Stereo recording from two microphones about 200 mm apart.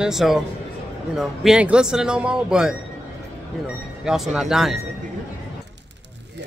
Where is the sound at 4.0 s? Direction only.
5° right (ahead or behind).